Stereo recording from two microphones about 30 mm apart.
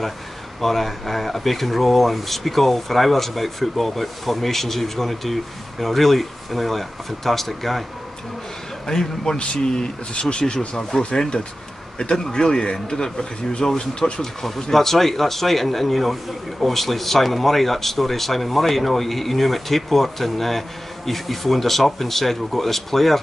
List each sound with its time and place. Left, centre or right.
0.6 s speech: centre
8.8 s a man's voice: centre
9.4 s speech: left
14.2 s speech: centre